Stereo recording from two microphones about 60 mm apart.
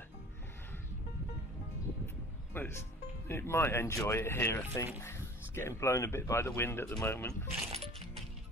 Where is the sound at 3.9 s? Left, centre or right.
Left.